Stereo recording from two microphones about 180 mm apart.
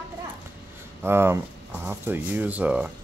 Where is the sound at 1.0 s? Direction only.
15° right (ahead or behind).